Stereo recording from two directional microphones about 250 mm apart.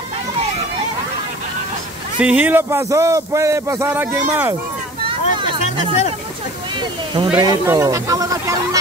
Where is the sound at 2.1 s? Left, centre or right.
Centre.